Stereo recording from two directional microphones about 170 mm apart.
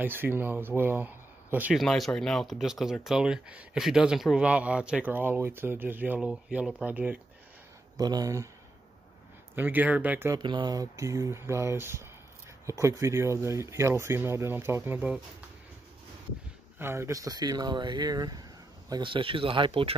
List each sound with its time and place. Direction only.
0.0 s speech: 10° right (ahead or behind)
8.0 s speech: 25° right (ahead or behind)
9.6 s speech: 10° right (ahead or behind)
10.4 s speech: 25° right (ahead or behind)
16.7 s speech: 15° right (ahead or behind); by 20.0 s 30° right (ahead or behind)